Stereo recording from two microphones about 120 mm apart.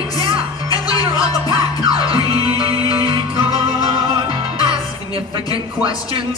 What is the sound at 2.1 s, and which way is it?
Music, 50° right (ahead or behind).